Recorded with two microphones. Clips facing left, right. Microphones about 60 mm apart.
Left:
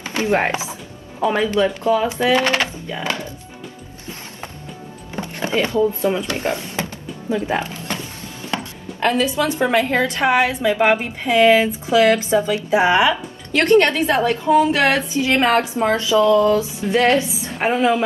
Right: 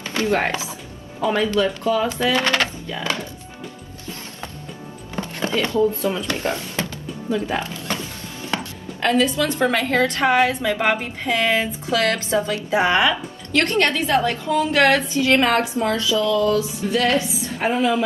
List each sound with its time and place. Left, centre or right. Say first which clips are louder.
0.0 s chopping: left 2 dB; left
1.3 s a woman's voice: left 1 dB; left
5.1 s chopping: left 2 dB; left
6.3 s music: left 2 dB; left
9.0 s a woman's voice: left 1 dB; centre